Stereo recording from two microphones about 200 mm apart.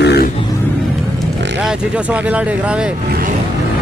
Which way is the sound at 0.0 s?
55° left (ahead or behind).